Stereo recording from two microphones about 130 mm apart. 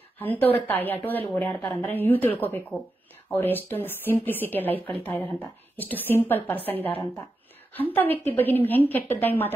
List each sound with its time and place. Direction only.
0.2 s a woman's voice: 15° left (ahead or behind)